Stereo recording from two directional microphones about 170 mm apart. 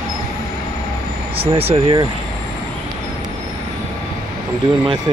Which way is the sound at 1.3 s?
35° right (ahead or behind).